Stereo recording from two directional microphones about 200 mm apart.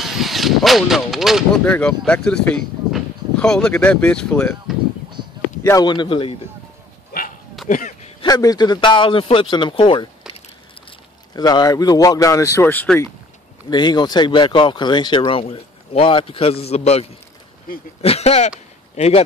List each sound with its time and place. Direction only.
0.0 s speech: centre (ahead or behind)
5.6 s speech: 15° left (ahead or behind)
7.6 s a sound: 40° left (ahead or behind)
8.2 s speech: 20° left (ahead or behind)
13.7 s a man's voice: 20° left (ahead or behind)